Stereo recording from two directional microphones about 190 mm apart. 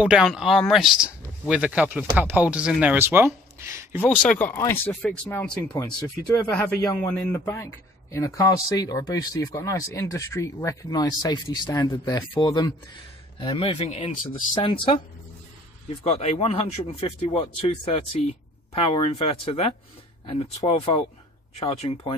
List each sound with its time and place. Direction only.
0.0 s speech: 5° right (ahead or behind)
4.0 s a man's voice: 5° left (ahead or behind); by 15.0 s 25° left (ahead or behind)
16.0 s a man's voice: 35° left (ahead or behind)